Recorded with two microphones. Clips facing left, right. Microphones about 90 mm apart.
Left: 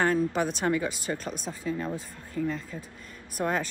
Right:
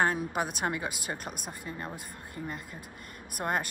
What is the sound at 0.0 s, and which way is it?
Speech, 10° right (ahead or behind).